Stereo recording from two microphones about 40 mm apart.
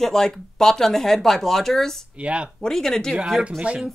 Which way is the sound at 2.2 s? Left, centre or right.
Right.